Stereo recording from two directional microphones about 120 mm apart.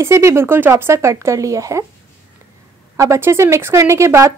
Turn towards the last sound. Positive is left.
turn(degrees=-25)  # may be behind; listen again after turning